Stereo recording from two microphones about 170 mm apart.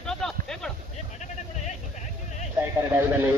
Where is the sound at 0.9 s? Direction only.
45° left (ahead or behind).